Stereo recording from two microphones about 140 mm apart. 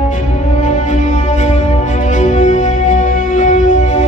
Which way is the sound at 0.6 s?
65° left (ahead or behind).